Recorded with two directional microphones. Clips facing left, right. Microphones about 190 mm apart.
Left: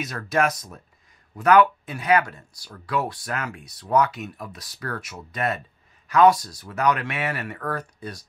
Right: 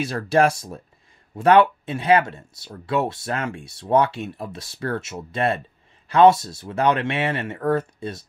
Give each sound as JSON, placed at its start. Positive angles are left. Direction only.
{"t": 0.0, "sound": "speech", "side_deg": -30}